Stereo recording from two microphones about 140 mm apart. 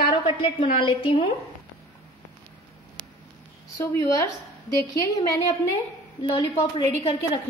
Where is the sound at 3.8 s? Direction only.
25° left (ahead or behind).